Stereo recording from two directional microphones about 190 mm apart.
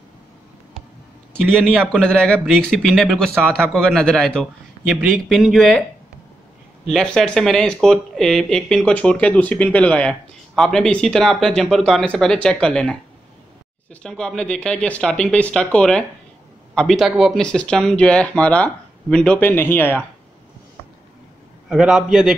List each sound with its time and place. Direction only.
1.5 s speech: centre (ahead or behind)
6.9 s speech: 5° left (ahead or behind)
14.0 s speech: 5° left (ahead or behind)
21.6 s speech: 5° right (ahead or behind)